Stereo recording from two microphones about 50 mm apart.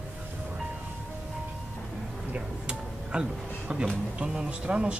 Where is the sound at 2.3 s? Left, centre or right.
Centre.